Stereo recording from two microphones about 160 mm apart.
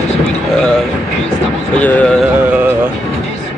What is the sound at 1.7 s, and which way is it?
Speech, 5° left (ahead or behind).